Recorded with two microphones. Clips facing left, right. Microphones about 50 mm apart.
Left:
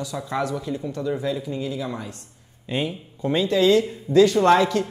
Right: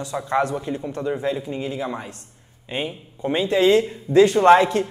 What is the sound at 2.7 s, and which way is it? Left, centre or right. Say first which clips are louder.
A woman's voice: left 1 dB; centre.